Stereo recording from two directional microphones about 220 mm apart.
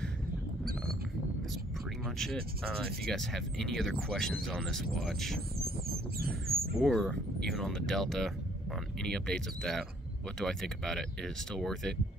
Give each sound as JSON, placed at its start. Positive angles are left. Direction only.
{"t": 2.0, "sound": "speech", "side_deg": 0}
{"t": 5.6, "sound": "bird", "side_deg": -45}
{"t": 6.8, "sound": "speech", "side_deg": 0}